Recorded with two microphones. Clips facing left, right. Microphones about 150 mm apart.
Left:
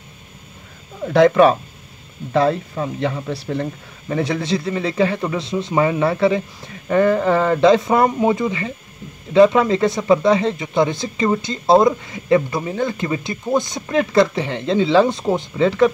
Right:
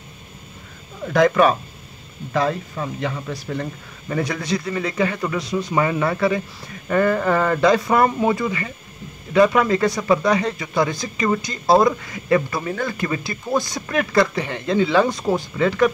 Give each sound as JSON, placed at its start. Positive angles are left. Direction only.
{"t": 1.0, "sound": "a man's voice", "side_deg": 30}